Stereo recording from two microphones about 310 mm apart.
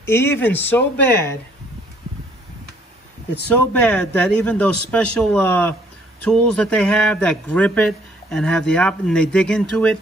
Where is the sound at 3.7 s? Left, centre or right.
Centre.